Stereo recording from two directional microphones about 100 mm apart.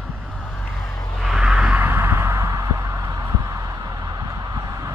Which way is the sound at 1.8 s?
25° right (ahead or behind).